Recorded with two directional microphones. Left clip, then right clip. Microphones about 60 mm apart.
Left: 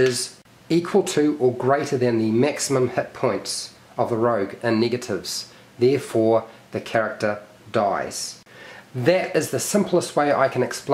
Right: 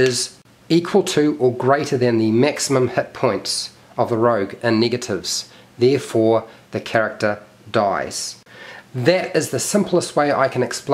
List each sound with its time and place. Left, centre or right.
0.0 s speech: centre